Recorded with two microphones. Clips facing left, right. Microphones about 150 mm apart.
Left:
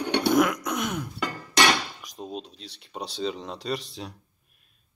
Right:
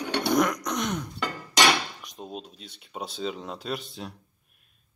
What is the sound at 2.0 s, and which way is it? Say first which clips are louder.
Speech: left 2 dB; centre (ahead or behind).